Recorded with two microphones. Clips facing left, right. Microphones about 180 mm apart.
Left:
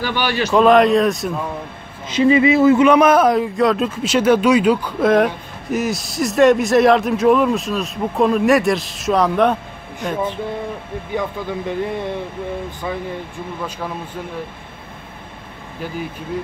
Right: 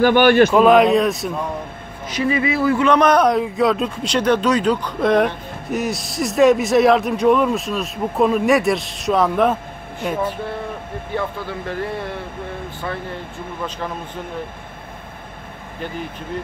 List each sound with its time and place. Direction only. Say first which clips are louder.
0.0 s a man's voice: right 9 dB; 50° right (ahead or behind)
0.5 s a man's voice: even; centre (ahead or behind)
2.0 s speech: left 6 dB; 25° left (ahead or behind)
2.9 s a man's voice: left 2 dB; 5° left (ahead or behind)
10.0 s a sound: even; 10° right (ahead or behind)
11.1 s speech: left 2 dB; 20° left (ahead or behind)